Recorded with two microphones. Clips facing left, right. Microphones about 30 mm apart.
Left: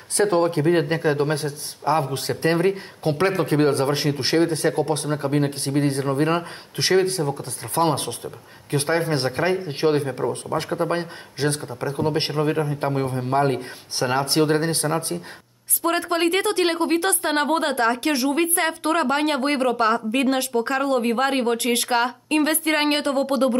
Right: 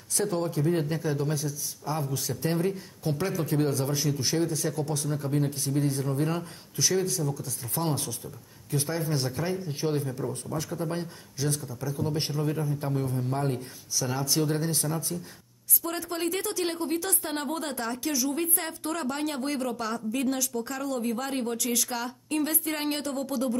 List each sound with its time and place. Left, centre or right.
0.2 s a man's voice: left